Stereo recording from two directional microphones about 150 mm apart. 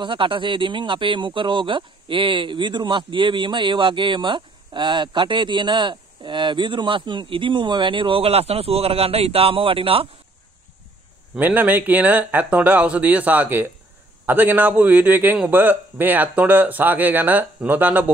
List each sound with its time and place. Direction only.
0.0 s speech: 35° right (ahead or behind)
11.3 s a man's voice: 10° right (ahead or behind)